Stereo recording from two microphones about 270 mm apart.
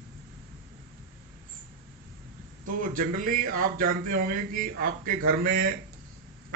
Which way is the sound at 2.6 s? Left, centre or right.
Right.